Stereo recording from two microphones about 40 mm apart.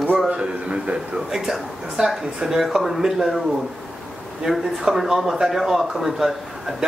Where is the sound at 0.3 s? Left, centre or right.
Right.